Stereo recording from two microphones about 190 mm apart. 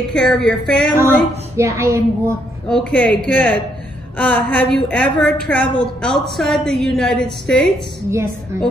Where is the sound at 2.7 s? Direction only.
5° left (ahead or behind).